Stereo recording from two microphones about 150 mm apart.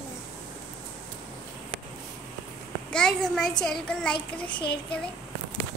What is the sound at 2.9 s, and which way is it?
A child's voice, 5° left (ahead or behind).